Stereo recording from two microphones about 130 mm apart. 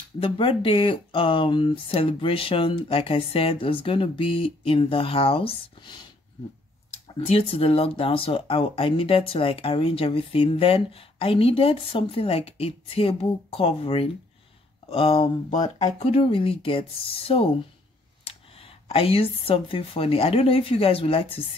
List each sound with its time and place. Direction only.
0.2 s speech: 40° left (ahead or behind)
7.2 s speech: 45° left (ahead or behind)
15.5 s speech: 65° left (ahead or behind); by 21.5 s 45° left (ahead or behind)